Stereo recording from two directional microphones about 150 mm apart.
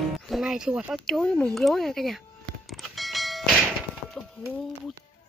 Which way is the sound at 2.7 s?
Centre (ahead or behind).